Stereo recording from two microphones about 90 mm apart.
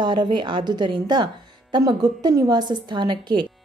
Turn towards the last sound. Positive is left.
turn(degrees=-60)  # may be behind; listen again after turning